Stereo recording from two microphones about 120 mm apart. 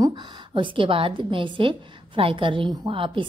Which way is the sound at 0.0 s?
45° right (ahead or behind).